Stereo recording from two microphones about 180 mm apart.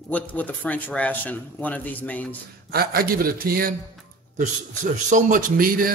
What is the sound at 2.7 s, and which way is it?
A man's voice, 55° right (ahead or behind).